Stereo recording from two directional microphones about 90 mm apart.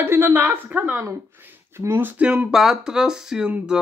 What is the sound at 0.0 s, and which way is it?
A woman's voice, 25° right (ahead or behind).